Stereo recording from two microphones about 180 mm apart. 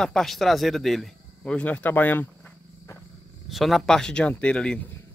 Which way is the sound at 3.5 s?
Centre (ahead or behind).